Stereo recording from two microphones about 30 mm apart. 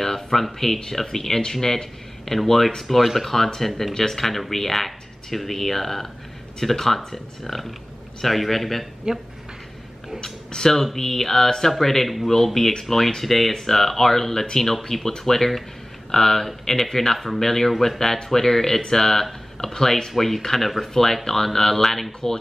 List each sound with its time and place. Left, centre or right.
0.0 s a man's voice: centre
3.9 s speech: centre
8.2 s a man's voice: centre
9.1 s speech: right
10.2 s speech: centre
10.7 s a man's voice: centre